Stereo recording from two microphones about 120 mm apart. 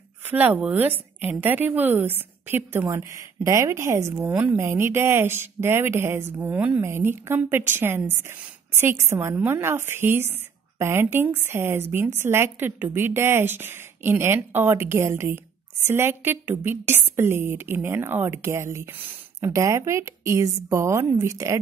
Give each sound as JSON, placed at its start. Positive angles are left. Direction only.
{"t": 0.3, "sound": "a woman's voice", "side_deg": -15}
{"t": 4.3, "sound": "a woman's voice", "side_deg": -10}